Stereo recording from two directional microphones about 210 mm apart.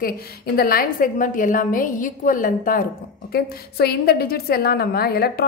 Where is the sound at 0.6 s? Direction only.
45° left (ahead or behind).